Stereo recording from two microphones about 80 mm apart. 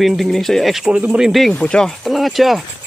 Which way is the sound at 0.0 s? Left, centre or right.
Centre.